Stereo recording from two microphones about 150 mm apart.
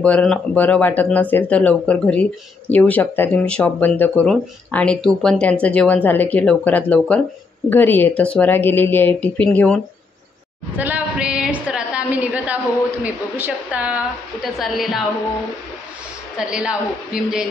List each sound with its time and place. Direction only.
0.0 s speech: 5° left (ahead or behind)
10.8 s a sound: 10° right (ahead or behind)
13.0 s a woman's voice: 10° right (ahead or behind)
16.3 s a woman's voice: 5° right (ahead or behind)